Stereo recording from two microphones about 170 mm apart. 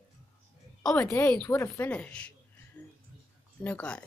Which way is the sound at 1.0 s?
20° left (ahead or behind).